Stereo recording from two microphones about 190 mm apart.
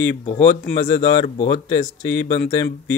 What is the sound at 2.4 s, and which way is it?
Mantra, 65° left (ahead or behind).